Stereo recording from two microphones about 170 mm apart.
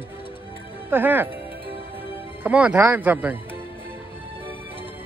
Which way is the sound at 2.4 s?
10° right (ahead or behind).